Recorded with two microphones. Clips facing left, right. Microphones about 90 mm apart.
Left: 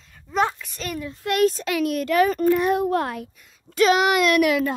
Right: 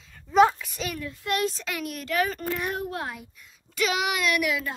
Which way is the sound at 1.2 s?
60° left (ahead or behind).